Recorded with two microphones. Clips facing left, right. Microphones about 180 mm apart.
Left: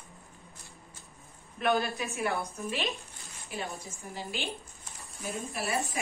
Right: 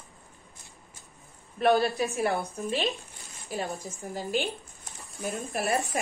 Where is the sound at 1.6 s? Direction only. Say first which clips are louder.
Right 6 dB; 35° right (ahead or behind).